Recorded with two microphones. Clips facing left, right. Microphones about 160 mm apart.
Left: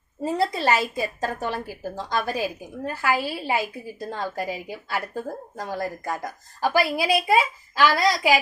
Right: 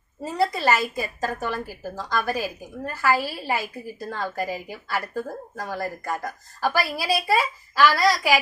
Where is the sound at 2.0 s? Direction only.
20° left (ahead or behind).